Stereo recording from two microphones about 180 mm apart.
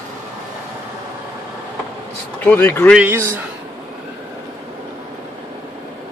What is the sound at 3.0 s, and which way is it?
Speech, 15° right (ahead or behind).